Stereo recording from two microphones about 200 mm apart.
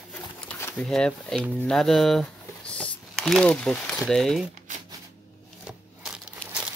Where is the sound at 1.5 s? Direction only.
5° left (ahead or behind).